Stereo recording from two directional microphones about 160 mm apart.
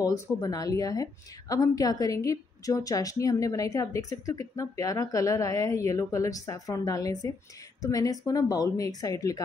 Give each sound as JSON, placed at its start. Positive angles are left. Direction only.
{"t": 0.0, "sound": "a woman's voice", "side_deg": 25}